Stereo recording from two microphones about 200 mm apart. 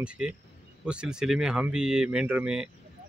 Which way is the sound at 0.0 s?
5° right (ahead or behind).